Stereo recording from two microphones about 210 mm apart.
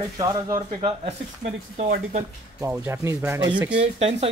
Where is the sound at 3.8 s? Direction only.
30° right (ahead or behind).